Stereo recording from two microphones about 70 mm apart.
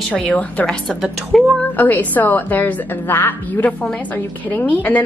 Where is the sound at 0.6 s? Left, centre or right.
Centre.